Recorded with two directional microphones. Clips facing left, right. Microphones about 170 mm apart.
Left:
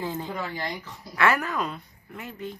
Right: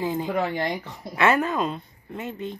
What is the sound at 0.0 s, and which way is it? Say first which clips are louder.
Speech: right 5 dB; 15° right (ahead or behind).